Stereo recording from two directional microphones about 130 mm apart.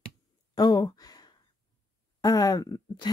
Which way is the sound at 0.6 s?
30° left (ahead or behind).